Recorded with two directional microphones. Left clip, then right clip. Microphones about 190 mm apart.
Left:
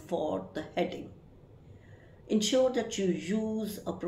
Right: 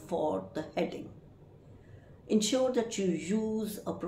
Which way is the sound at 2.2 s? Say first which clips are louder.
Left 2 dB; 10° right (ahead or behind).